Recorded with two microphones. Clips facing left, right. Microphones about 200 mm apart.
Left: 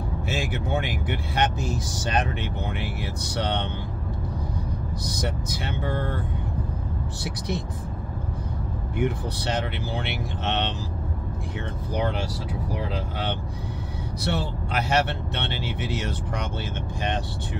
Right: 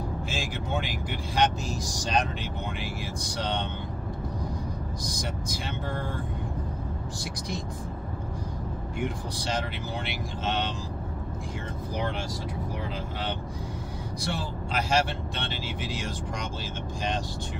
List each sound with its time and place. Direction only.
0.3 s speech: 60° left (ahead or behind)
5.0 s speech: 60° left (ahead or behind)
7.2 s speech: 65° left (ahead or behind)
8.9 s speech: 60° left (ahead or behind)
14.2 s speech: 65° left (ahead or behind)